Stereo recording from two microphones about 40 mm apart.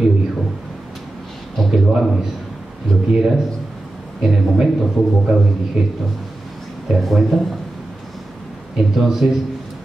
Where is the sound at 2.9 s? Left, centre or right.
Left.